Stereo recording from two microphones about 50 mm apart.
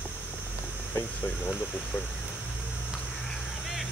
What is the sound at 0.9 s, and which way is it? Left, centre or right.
Speech, left.